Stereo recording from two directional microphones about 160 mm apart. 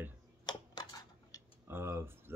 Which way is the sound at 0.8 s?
25° left (ahead or behind).